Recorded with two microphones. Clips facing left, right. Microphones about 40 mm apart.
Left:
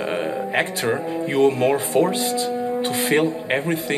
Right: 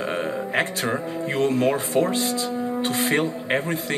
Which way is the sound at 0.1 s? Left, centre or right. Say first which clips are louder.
Left 2 dB; centre.